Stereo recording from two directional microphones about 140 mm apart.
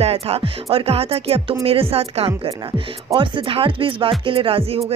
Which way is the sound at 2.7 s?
30° right (ahead or behind).